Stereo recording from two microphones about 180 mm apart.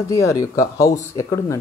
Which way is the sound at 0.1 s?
15° left (ahead or behind).